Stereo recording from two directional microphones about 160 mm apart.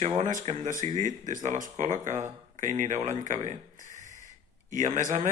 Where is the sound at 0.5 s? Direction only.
50° right (ahead or behind).